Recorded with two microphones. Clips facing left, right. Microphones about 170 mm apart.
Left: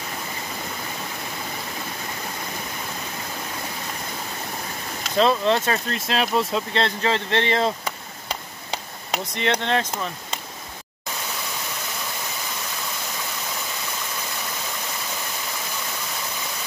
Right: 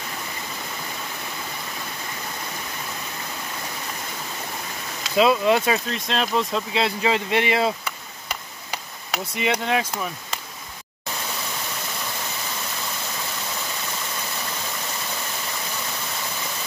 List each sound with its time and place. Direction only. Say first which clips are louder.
5.1 s speech: right 1 dB; 5° right (ahead or behind)
5.9 s speech: left 1 dB; 5° left (ahead or behind)
8.3 s tick-tock: left 2 dB; 30° left (ahead or behind)
9.2 s speech: even; 10° right (ahead or behind)